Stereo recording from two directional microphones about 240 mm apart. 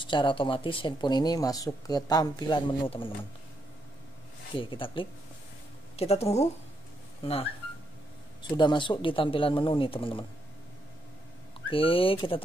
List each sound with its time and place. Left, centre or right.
0.0 s speech: centre
4.6 s speech: left
8.4 s speech: centre
11.7 s speech: left